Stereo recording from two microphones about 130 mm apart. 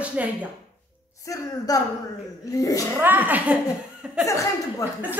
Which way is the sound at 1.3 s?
30° left (ahead or behind).